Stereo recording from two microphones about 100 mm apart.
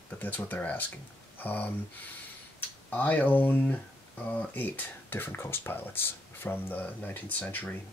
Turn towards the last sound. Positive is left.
turn(degrees=15)  # may be behind; listen again after turning